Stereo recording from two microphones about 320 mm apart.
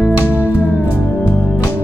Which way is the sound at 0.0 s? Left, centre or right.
Centre.